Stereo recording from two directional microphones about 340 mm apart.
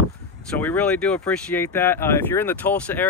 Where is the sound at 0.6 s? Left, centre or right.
Centre.